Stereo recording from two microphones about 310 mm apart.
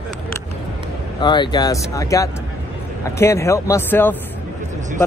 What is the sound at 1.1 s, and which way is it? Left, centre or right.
Speech, centre.